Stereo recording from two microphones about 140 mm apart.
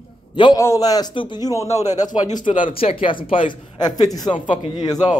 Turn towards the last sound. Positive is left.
turn(degrees=30)  # may be behind; listen again after turning